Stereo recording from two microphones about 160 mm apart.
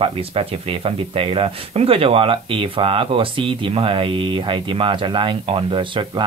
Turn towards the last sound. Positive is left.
turn(degrees=-30)  # may be behind; listen again after turning